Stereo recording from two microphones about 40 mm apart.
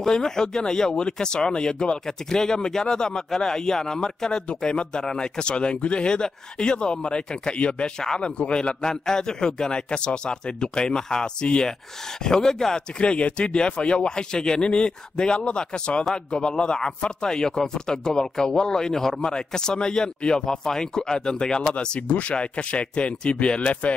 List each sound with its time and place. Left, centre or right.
0.0 s speech: centre
8.0 s a man's voice: centre
8.4 s a man's voice: left
21.6 s speech: left